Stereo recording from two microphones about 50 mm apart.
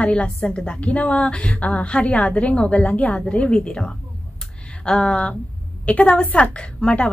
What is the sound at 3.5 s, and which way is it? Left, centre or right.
A woman's voice, centre.